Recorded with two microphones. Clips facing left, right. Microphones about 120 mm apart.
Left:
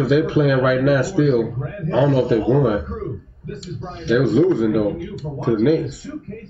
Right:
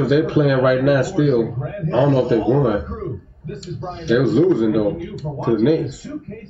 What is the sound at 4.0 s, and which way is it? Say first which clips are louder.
Speech: right 1 dB; centre (ahead or behind).